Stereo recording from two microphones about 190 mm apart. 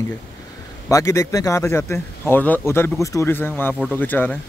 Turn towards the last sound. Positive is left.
turn(degrees=10)  # may be behind; listen again after turning